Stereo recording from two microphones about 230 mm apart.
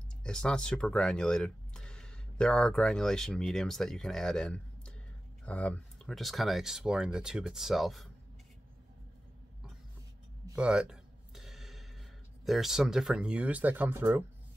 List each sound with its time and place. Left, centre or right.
0.2 s speech: centre
10.5 s a sound: centre
12.4 s speech: centre